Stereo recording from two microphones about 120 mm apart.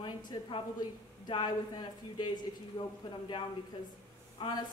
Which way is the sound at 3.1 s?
40° left (ahead or behind).